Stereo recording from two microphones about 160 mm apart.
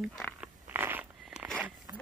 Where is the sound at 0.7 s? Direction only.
10° right (ahead or behind).